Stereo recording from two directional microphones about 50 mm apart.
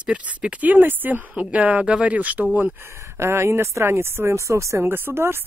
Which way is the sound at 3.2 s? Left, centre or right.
Right.